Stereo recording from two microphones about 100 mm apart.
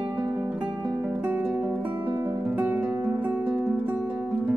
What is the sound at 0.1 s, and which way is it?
Music, 15° right (ahead or behind).